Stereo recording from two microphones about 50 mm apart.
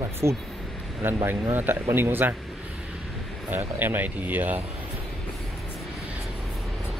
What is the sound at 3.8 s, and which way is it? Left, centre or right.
Speech, right.